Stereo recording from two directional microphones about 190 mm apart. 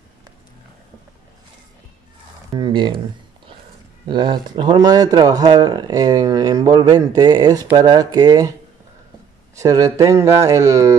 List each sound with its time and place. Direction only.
2.5 s speech: 25° right (ahead or behind)
4.1 s speech: 25° right (ahead or behind)
9.6 s speech: 15° right (ahead or behind)